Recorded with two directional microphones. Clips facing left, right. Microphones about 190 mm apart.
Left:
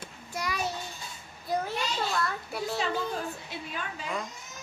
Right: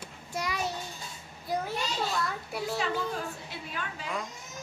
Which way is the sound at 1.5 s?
10° right (ahead or behind).